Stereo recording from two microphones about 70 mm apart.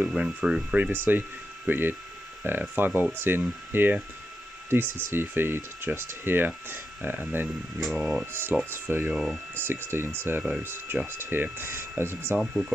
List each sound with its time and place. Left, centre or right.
0.0 s speech: centre
0.7 s speech: right
7.8 s speech: centre
8.3 s speech: right
9.1 s speech: centre
9.6 s speech: right
12.4 s speech: centre